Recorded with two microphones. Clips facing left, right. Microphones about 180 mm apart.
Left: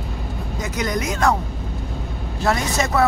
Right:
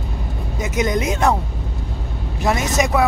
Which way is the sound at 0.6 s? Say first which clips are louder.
Right 4 dB; 20° right (ahead or behind).